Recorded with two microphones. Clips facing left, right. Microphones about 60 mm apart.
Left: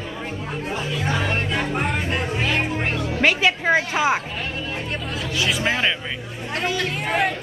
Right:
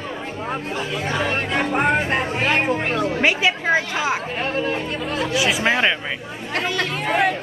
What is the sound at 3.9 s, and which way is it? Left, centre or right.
Speech, centre.